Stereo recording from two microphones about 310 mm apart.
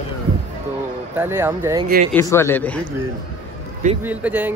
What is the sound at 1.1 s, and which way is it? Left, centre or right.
Speech, centre.